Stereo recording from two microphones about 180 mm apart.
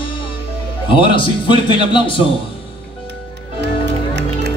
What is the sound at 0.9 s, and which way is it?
A man's voice, 30° left (ahead or behind).